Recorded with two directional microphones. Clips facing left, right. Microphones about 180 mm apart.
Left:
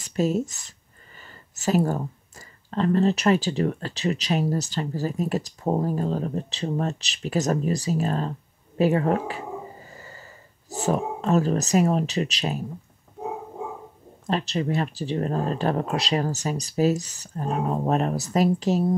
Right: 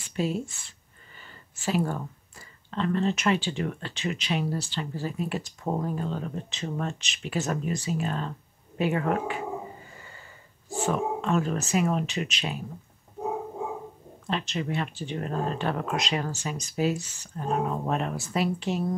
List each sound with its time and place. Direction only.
0.0 s speech: 40° left (ahead or behind)
14.2 s speech: 40° left (ahead or behind)